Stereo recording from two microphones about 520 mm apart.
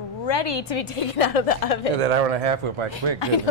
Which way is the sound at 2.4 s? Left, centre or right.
Right.